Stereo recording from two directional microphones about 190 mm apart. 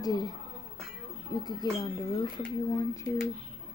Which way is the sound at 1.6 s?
20° left (ahead or behind).